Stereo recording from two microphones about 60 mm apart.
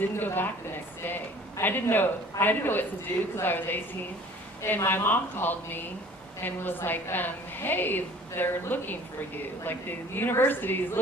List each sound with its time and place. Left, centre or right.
0.0 s a woman's voice: left